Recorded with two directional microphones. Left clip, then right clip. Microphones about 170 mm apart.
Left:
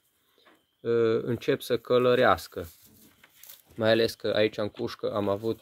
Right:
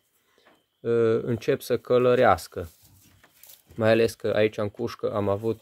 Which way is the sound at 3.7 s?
10° right (ahead or behind).